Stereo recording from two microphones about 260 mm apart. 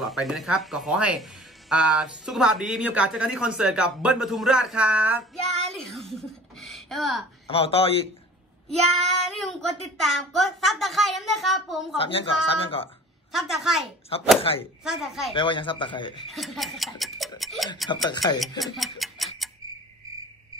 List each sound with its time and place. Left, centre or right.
0.0 s child singing: centre
6.6 s a sound: centre
7.4 s a woman's voice: left
8.6 s child singing: centre
12.0 s a woman's voice: left
13.3 s child singing: centre
15.3 s a woman's voice: centre
16.3 s child singing: centre
18.1 s speech: centre
18.6 s tick-tock: centre